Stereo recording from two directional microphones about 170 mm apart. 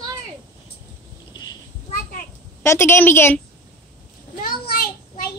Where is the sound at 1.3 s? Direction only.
25° left (ahead or behind).